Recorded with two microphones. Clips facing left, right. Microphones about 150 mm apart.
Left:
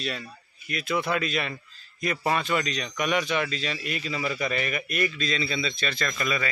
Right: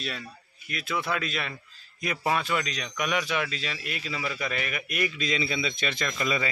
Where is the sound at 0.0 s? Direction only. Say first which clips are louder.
Left 3 dB; centre (ahead or behind).